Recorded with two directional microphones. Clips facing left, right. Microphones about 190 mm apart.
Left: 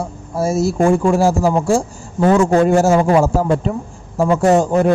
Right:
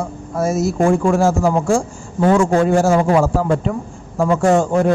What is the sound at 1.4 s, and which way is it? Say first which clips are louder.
A man's voice: left 1 dB; centre (ahead or behind).